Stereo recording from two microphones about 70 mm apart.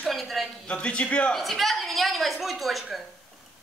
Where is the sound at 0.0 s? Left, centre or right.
Centre.